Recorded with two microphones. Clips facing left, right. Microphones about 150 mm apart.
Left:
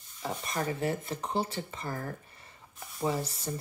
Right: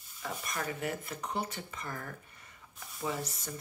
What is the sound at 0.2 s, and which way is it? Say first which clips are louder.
Speech: left 4 dB; 30° left (ahead or behind).